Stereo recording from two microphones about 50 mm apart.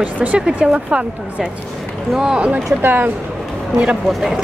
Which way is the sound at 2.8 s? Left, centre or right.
Right.